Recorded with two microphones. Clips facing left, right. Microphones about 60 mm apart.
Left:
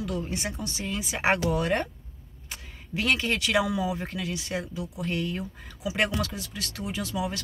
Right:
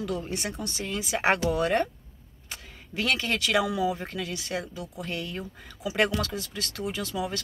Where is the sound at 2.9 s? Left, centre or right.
Centre.